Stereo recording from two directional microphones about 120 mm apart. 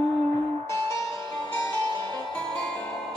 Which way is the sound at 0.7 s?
25° left (ahead or behind).